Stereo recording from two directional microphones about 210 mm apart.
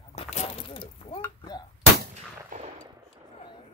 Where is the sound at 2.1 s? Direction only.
35° right (ahead or behind).